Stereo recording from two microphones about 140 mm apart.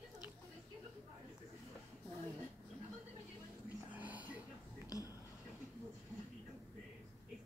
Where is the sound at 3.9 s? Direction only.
10° right (ahead or behind).